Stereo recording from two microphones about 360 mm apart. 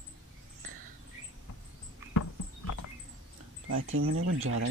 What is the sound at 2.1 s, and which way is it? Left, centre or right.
Horse, left.